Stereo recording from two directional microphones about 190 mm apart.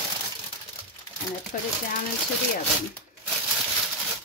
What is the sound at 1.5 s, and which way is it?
Speech, 50° left (ahead or behind).